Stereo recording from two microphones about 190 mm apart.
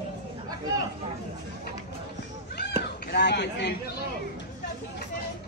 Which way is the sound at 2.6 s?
60° left (ahead or behind).